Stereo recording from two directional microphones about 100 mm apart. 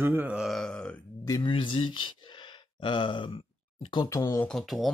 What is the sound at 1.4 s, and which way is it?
Speech, 60° left (ahead or behind).